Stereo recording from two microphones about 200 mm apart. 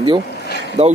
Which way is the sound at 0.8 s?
35° right (ahead or behind).